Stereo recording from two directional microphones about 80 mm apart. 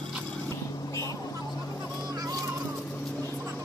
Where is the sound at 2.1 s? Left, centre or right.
Right.